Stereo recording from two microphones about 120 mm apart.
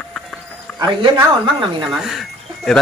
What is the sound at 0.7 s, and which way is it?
A woman's voice, 40° right (ahead or behind).